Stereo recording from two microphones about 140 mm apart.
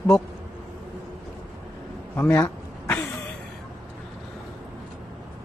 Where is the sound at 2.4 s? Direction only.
15° left (ahead or behind).